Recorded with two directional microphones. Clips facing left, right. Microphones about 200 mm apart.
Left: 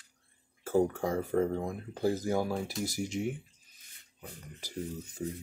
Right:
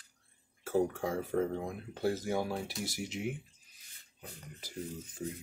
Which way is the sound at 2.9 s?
45° left (ahead or behind).